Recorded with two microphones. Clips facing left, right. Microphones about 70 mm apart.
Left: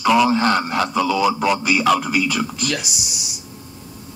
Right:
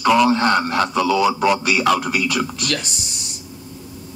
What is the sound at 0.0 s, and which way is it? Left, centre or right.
A man's voice, centre.